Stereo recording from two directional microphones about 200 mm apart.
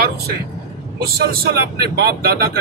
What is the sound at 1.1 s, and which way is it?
Speech, 50° right (ahead or behind).